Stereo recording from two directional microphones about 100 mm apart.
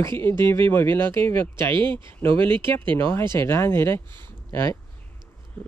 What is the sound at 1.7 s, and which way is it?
Speech, 55° right (ahead or behind).